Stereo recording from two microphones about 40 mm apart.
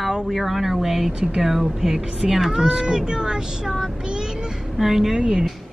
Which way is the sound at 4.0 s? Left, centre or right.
Centre.